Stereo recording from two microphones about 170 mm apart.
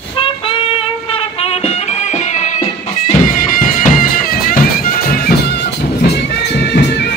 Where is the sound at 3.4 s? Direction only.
50° left (ahead or behind); by 7.1 s 70° left (ahead or behind).